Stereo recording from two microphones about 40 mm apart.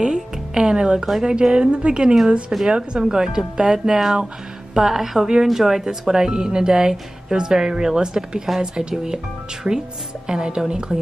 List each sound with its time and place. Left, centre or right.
0.0 s a woman's voice: centre